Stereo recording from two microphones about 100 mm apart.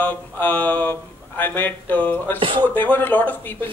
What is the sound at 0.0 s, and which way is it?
Speech, 20° left (ahead or behind).